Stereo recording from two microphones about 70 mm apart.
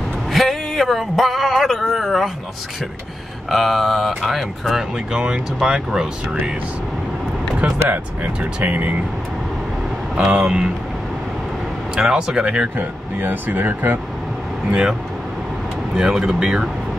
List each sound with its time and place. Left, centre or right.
0.3 s a sound: centre
3.4 s speech: centre
7.9 s speech: centre
10.1 s speech: centre
12.0 s speech: centre
12.7 s speech: right
14.7 s speech: centre
16.0 s speech: centre